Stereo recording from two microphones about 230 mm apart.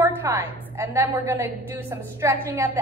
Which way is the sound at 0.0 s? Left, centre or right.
Centre.